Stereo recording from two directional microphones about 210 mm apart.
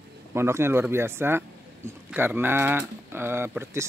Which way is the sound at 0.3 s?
10° right (ahead or behind).